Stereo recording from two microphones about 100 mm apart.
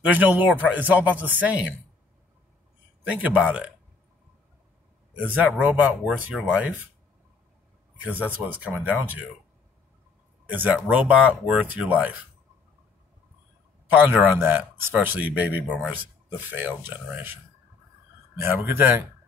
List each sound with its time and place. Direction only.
0.0 s speech: 15° right (ahead or behind)
3.0 s speech: 15° right (ahead or behind)
5.1 s a man's voice: 15° right (ahead or behind)
8.1 s speech: 15° right (ahead or behind)
10.4 s speech: 15° right (ahead or behind)
13.8 s speech: 20° right (ahead or behind)
18.4 s speech: 25° right (ahead or behind)